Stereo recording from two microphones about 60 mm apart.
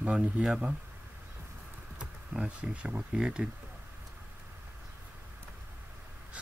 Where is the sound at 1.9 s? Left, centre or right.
Centre.